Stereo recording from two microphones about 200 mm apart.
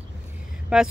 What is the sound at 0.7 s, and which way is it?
Speech, 5° right (ahead or behind).